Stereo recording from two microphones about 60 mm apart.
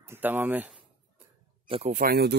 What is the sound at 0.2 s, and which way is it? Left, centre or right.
Speech, right.